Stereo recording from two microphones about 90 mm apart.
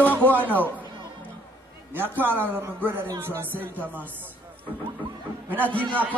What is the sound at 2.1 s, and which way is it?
Speech, 20° left (ahead or behind).